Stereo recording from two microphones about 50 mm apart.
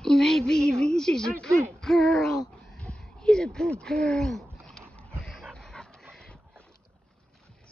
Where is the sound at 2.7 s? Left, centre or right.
Centre.